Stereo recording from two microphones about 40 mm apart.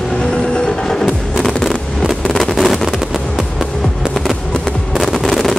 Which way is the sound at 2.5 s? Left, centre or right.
Centre.